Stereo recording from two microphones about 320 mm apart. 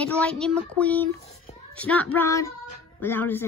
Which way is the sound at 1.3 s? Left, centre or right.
Centre.